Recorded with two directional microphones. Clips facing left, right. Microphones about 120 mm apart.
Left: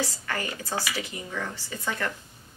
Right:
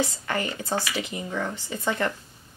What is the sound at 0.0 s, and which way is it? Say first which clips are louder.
A woman's voice: right 4 dB; 20° right (ahead or behind).